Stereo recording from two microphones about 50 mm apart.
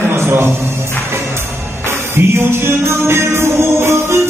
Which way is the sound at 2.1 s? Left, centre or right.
Right.